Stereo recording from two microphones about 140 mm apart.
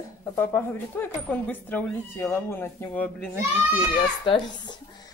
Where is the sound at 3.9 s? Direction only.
30° left (ahead or behind).